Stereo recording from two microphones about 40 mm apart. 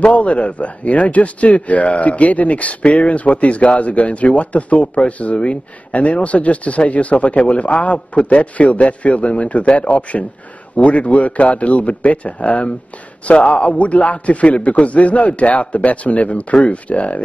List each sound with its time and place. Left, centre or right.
0.0 s speech: left